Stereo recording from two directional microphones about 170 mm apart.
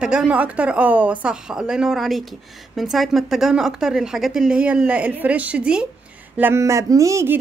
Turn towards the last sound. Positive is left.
turn(degrees=-15)  # may be behind; listen again after turning